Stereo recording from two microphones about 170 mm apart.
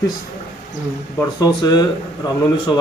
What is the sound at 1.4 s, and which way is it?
Speech, 25° left (ahead or behind).